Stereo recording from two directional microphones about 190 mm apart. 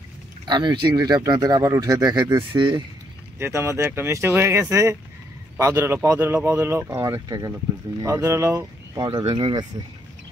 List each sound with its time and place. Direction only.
0.5 s speech: 25° right (ahead or behind)
3.3 s speech: 15° right (ahead or behind)